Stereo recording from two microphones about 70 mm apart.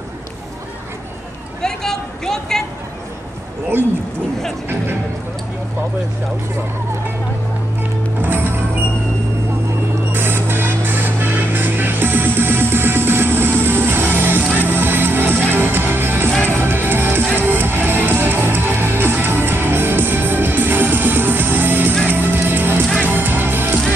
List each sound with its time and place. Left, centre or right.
1.6 s speech: centre
8.2 s music: right
10.1 s music: right